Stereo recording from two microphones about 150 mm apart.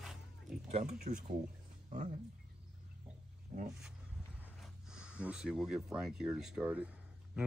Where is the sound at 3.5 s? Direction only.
60° right (ahead or behind).